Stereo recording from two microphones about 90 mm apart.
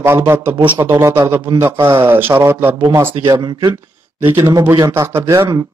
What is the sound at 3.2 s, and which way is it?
Speech, 50° right (ahead or behind).